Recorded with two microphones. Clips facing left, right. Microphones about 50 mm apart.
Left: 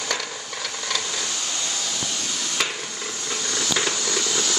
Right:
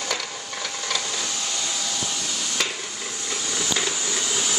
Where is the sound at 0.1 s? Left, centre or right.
Centre.